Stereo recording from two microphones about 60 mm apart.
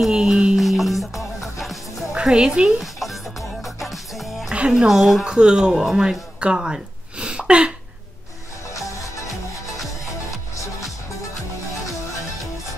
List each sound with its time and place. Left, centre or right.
0.0 s music: centre
0.6 s music: centre
2.1 s a woman's voice: centre
2.8 s music: centre
4.5 s music: centre
4.8 s speech: centre
5.2 s music: centre
5.7 s speech: centre